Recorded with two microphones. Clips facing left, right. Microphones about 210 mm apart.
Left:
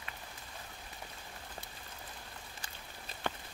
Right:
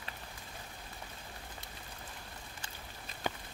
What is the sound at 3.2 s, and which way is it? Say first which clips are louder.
Walk: right 1 dB; 10° right (ahead or behind).